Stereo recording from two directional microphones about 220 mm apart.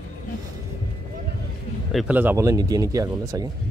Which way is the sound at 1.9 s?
5° right (ahead or behind).